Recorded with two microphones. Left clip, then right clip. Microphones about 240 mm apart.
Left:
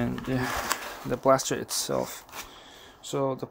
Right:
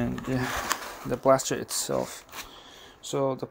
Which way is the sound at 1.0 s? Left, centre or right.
Centre.